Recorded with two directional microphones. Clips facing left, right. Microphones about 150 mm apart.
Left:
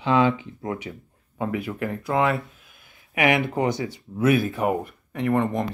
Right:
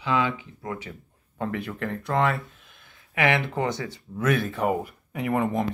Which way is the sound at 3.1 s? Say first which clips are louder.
Left 3 dB; 15° left (ahead or behind).